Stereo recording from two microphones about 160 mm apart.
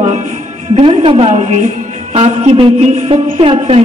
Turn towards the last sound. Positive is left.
turn(degrees=-40)  # may be behind; listen again after turning